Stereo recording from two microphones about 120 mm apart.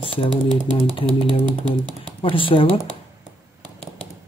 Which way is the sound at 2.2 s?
45° left (ahead or behind).